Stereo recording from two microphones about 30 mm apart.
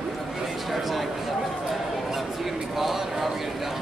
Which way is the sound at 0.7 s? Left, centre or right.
Centre.